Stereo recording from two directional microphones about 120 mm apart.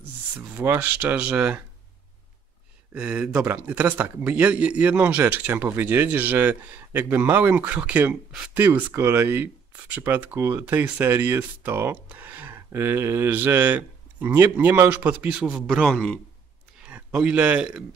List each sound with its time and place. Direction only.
0.6 s speech: 15° right (ahead or behind)
2.9 s speech: 10° right (ahead or behind); by 16.2 s 5° left (ahead or behind)
16.8 s speech: 10° right (ahead or behind)